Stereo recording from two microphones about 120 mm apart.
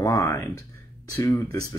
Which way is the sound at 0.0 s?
25° left (ahead or behind).